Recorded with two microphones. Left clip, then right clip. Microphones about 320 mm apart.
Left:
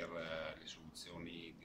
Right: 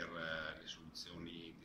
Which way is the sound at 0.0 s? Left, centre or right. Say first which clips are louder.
Right 1 dB; centre.